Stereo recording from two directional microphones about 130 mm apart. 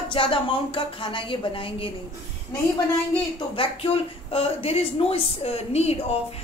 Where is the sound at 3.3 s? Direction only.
45° left (ahead or behind).